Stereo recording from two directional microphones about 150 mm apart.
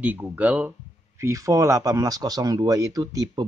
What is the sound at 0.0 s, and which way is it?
Speech, 10° right (ahead or behind).